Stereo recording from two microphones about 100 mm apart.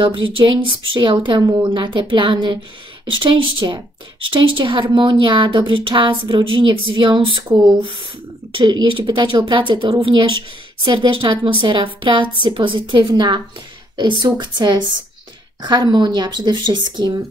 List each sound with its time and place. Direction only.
0.0 s speech: 60° right (ahead or behind)
8.9 s speech: 45° right (ahead or behind)